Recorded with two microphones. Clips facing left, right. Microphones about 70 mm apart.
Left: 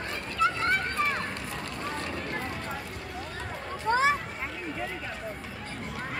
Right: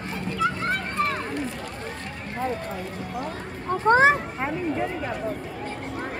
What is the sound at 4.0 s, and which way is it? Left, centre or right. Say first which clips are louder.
Vehicle: right 7 dB; right.